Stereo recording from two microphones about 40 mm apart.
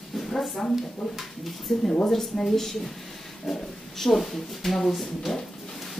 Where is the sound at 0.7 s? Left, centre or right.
Centre.